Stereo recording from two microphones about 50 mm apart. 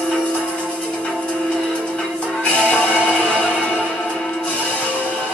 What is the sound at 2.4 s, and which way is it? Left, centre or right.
Music, left.